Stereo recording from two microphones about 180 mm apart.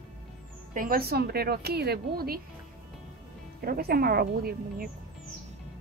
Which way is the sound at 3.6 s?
55° right (ahead or behind).